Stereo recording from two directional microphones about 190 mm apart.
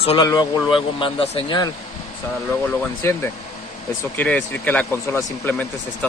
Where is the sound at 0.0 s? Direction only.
30° left (ahead or behind).